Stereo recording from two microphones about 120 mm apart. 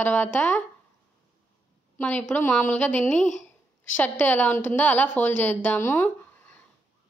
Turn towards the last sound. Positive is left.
turn(degrees=20)  # may be behind; listen again after turning